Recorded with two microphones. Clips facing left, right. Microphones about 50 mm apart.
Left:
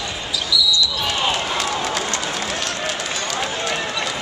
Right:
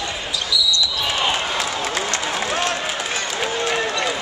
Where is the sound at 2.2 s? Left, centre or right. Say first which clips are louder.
Right 3 dB; centre.